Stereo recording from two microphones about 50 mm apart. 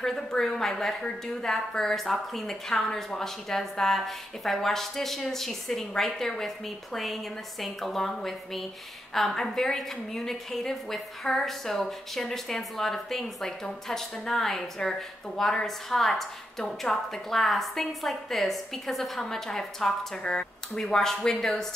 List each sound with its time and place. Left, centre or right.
0.0 s a woman's voice: centre
20.2 s a woman's voice: centre